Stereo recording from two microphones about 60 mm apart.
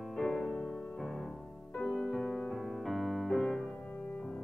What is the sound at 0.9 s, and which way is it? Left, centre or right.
Music, centre.